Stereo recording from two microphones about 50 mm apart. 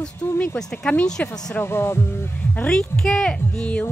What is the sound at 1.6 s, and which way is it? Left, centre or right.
Speech, left.